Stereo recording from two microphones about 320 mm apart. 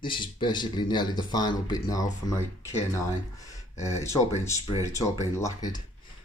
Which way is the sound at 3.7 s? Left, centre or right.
Left.